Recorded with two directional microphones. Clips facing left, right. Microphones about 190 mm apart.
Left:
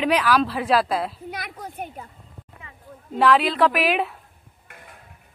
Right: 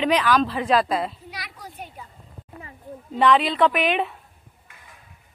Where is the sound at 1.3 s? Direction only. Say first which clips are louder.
Left 5 dB; 55° left (ahead or behind).